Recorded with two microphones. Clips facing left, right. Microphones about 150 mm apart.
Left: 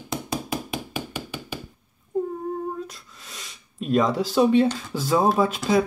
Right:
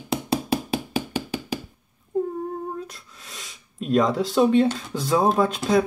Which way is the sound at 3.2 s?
Centre (ahead or behind).